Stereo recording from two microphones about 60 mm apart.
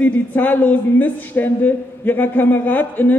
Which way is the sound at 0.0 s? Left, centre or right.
Left.